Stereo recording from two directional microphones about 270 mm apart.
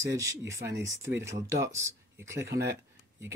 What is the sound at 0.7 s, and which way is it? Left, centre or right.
Speech, right.